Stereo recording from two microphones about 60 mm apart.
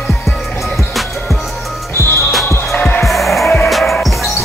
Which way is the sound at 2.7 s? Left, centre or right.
Left.